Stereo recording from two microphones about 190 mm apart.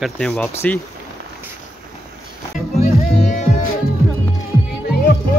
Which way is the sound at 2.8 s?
40° left (ahead or behind).